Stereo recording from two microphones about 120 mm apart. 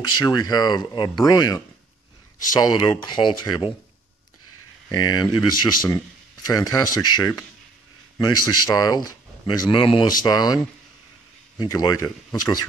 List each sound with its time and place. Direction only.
0.2 s speech: 35° left (ahead or behind)
4.9 s speech: 35° left (ahead or behind)